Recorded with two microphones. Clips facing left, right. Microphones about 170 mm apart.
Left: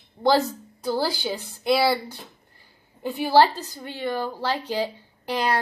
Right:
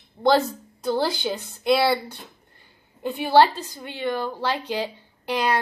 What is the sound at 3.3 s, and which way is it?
Speech, 15° right (ahead or behind).